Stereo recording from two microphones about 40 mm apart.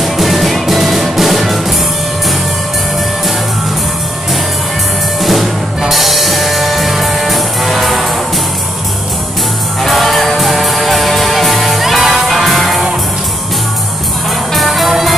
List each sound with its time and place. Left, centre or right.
0.0 s music: centre
5.2 s music: centre
9.8 s music: centre
14.5 s music: centre